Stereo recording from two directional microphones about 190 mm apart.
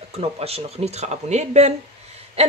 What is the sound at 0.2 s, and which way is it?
Speech, 30° right (ahead or behind).